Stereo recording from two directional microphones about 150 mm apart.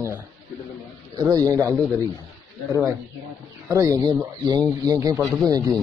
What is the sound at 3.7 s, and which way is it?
Speech, 20° right (ahead or behind).